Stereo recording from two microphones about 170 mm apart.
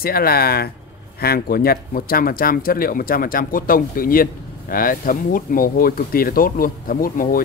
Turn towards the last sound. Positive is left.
turn(degrees=55)  # may be behind; listen again after turning